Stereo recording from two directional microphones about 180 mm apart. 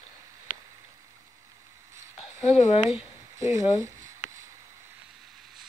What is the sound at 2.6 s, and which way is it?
Speech, 35° left (ahead or behind).